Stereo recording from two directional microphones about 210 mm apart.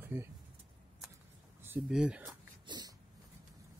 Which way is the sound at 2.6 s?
20° right (ahead or behind).